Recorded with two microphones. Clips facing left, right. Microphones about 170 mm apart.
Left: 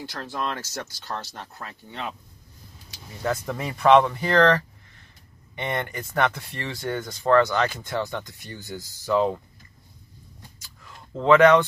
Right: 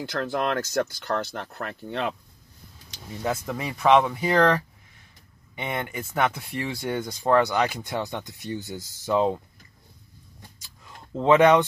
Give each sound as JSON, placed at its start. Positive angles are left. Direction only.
{"t": 0.2, "sound": "speech", "side_deg": -60}
{"t": 3.3, "sound": "speech", "side_deg": 0}
{"t": 10.8, "sound": "a sound", "side_deg": -20}